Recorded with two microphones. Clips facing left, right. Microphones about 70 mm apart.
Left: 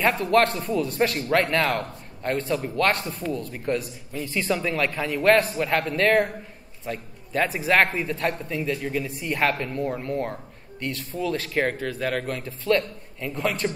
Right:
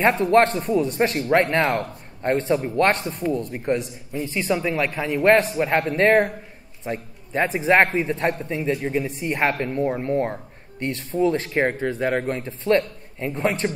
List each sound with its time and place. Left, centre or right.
0.2 s a man's voice: right
4.1 s a man's voice: centre